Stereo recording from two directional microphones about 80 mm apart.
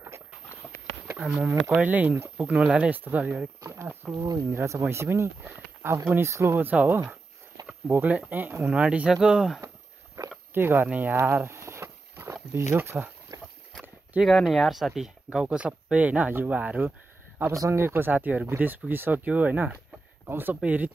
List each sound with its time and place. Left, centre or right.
1.7 s speech: right
3.7 s a sound: right
4.1 s speech: right
4.5 s speech: right
8.7 s speech: centre
10.2 s a sound: right
10.5 s speech: right
11.1 s a sound: right
13.3 s a sound: right
14.4 s speech: centre
15.3 s speech: centre
17.5 s speech: right; by 20.9 s centre